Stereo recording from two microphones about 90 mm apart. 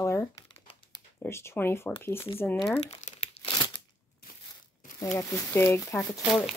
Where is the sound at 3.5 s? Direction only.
60° left (ahead or behind).